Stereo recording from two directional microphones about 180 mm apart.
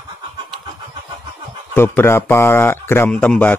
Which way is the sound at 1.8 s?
15° left (ahead or behind).